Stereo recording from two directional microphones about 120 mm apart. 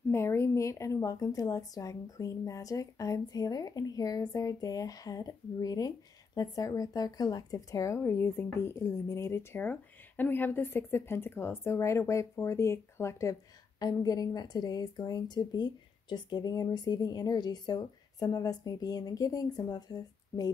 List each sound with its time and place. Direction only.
0.1 s a woman's voice: 20° left (ahead or behind)